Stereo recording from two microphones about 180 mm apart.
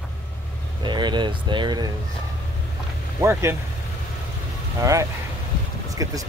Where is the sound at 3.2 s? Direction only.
15° right (ahead or behind).